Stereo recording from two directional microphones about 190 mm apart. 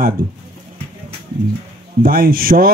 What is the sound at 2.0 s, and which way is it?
Speech, 50° right (ahead or behind).